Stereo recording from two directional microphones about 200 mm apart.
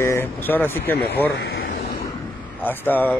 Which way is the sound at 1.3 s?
55° left (ahead or behind).